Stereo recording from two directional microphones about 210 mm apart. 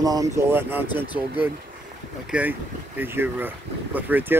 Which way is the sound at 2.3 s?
10° right (ahead or behind).